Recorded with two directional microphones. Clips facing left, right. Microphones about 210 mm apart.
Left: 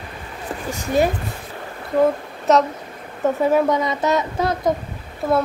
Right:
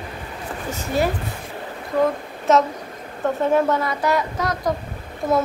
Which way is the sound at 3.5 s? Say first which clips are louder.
Left 1 dB; 15° left (ahead or behind).